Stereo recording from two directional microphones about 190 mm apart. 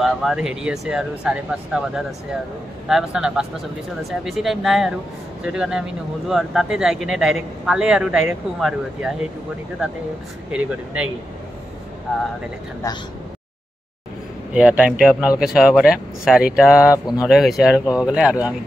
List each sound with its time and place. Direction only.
0.0 s speech: centre (ahead or behind)
10.5 s speech: 5° right (ahead or behind)
14.5 s speech: 5° right (ahead or behind)
16.9 s speech: 20° left (ahead or behind)
17.3 s speech: centre (ahead or behind)